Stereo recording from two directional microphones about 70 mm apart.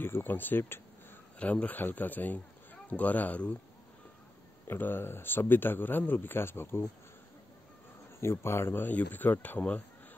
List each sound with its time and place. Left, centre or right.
0.0 s speech: left
1.4 s speech: left
4.6 s speech: left
8.2 s speech: left